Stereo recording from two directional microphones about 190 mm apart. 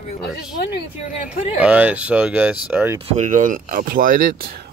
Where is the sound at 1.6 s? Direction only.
5° right (ahead or behind).